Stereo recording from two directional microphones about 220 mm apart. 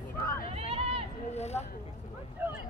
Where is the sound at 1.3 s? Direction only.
30° left (ahead or behind).